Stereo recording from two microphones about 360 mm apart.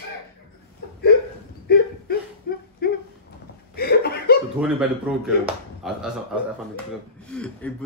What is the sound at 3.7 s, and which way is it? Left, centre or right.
Chuckle, left.